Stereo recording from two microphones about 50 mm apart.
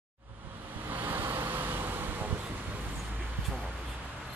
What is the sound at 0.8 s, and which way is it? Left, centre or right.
Vehicle, right.